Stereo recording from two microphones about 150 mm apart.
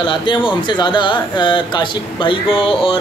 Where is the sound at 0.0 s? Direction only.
35° left (ahead or behind).